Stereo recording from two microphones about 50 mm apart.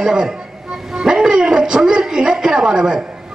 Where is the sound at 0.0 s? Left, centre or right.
Centre.